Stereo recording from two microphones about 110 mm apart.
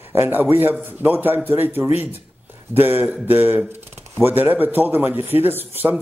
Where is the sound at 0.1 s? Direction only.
20° right (ahead or behind).